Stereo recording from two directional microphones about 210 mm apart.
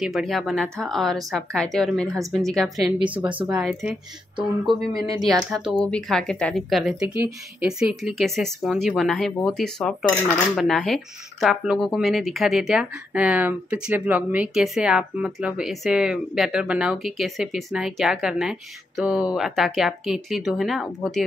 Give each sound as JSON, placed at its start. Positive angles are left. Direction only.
{"t": 0.0, "sound": "speech", "side_deg": 0}
{"t": 4.7, "sound": "speech", "side_deg": -20}
{"t": 5.2, "sound": "speech", "side_deg": 0}